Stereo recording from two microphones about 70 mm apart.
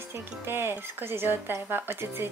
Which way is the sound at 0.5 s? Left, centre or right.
Right.